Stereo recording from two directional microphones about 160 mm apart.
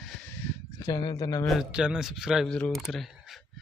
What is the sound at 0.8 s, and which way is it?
Speech, 25° left (ahead or behind).